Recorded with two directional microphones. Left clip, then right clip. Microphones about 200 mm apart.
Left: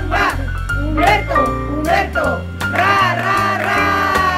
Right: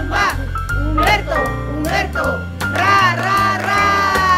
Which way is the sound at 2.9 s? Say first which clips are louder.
Right 2 dB; 20° left (ahead or behind).